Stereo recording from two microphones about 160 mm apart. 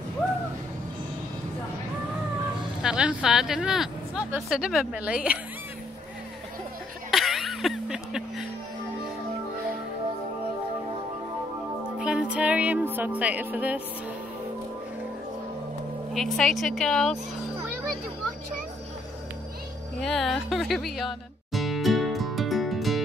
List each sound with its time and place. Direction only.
2.8 s speech: 5° right (ahead or behind)
7.1 s a sound: centre (ahead or behind)
12.0 s music: 5° right (ahead or behind)
16.1 s speech: centre (ahead or behind)
20.0 s music: centre (ahead or behind)